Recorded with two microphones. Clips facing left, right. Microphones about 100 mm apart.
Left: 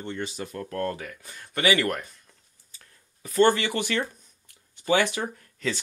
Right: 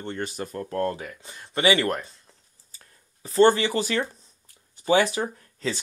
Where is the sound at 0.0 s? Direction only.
45° right (ahead or behind).